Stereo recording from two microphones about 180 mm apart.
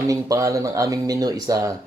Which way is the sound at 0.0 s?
20° right (ahead or behind).